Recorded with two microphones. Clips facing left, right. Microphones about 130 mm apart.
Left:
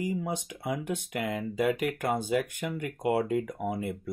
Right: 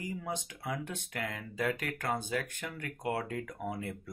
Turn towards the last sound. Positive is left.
turn(degrees=15)  # may be behind; listen again after turning